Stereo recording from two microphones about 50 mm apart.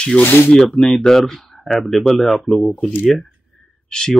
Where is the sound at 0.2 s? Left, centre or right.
Left.